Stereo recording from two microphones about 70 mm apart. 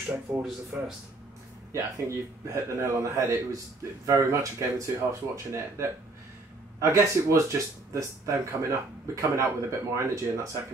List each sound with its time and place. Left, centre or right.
0.4 s speech: centre
1.7 s a man's voice: right